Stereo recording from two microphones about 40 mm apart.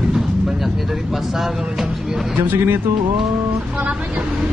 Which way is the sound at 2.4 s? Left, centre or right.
Right.